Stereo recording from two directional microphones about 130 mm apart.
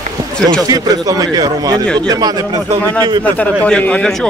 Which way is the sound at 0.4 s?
5° left (ahead or behind).